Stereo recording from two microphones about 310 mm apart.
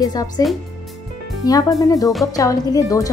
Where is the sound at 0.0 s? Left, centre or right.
Centre.